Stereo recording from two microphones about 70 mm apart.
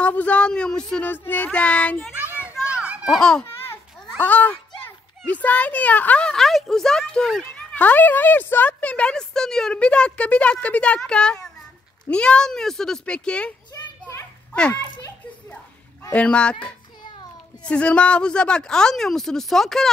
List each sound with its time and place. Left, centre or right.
0.0 s speech: centre
1.0 s child singing: left
2.1 s children playing: right
3.1 s speech: centre
4.2 s a child's voice: left
6.3 s speech: centre
7.7 s speech: left
14.7 s a child's voice: left
16.1 s speech: centre